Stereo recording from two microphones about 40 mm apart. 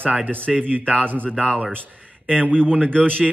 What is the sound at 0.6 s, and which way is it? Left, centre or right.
Speech, right.